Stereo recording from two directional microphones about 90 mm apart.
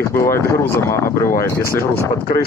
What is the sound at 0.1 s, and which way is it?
Speech, 30° left (ahead or behind).